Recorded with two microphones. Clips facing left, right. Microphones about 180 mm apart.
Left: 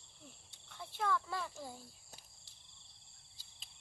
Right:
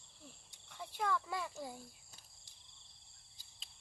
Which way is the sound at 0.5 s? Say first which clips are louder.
Right 2 dB; 10° right (ahead or behind).